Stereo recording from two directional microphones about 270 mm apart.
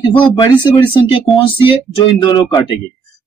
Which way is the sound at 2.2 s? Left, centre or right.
Centre.